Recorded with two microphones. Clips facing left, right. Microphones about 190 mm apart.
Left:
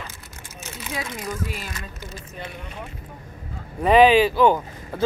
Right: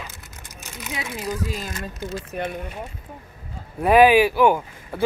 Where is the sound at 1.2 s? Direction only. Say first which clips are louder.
Right 3 dB; 35° right (ahead or behind).